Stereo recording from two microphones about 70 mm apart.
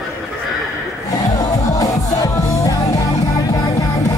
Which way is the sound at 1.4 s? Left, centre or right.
Left.